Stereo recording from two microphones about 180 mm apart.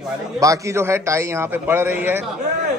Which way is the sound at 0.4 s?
15° right (ahead or behind).